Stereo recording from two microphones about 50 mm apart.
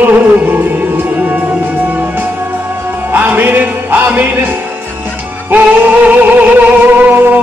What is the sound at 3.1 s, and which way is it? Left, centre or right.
Music, right.